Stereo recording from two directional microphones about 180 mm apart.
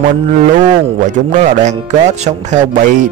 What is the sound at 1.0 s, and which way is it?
Speech, 45° right (ahead or behind).